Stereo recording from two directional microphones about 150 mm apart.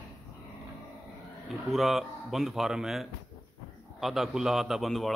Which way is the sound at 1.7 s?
Centre (ahead or behind).